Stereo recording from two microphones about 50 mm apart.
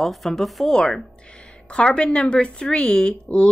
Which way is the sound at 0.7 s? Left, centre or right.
Centre.